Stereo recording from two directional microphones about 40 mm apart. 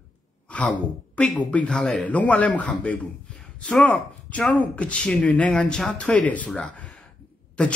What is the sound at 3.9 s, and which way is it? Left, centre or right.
A woman's voice, left.